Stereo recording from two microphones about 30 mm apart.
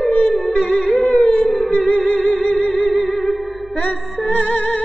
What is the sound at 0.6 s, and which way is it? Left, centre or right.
Music, left.